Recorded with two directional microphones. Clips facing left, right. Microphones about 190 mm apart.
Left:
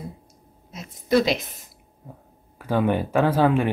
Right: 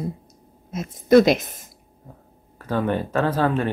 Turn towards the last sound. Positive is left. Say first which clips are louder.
# left 2 dB
turn(degrees=15)  # may be behind; listen again after turning